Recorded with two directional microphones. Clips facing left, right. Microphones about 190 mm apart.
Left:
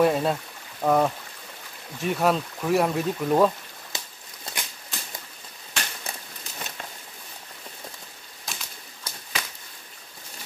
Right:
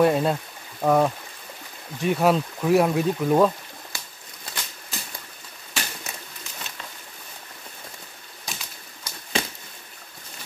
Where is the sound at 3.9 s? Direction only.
20° left (ahead or behind).